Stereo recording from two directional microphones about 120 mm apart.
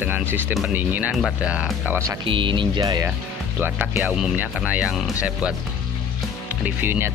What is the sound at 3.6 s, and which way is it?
Speech, 20° right (ahead or behind).